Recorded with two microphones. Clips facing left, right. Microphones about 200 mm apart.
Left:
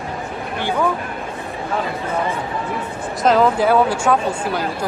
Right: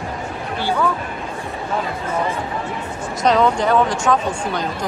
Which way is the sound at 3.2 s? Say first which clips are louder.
Left 1 dB; centre (ahead or behind).